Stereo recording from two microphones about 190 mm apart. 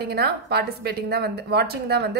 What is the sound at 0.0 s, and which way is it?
A woman's voice, 55° right (ahead or behind).